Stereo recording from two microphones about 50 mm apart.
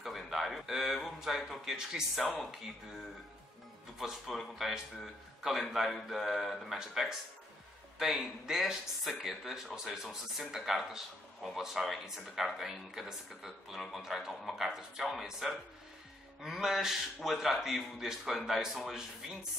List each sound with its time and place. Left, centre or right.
0.0 s speech: centre
4.0 s speech: centre